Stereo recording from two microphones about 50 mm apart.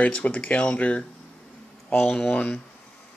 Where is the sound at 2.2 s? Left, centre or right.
Left.